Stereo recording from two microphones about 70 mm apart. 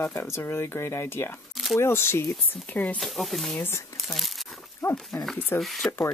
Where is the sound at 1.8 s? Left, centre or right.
Left.